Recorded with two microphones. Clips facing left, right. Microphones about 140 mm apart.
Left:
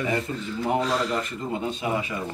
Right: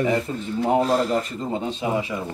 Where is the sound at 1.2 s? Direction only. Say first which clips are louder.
Right 2 dB; 30° right (ahead or behind).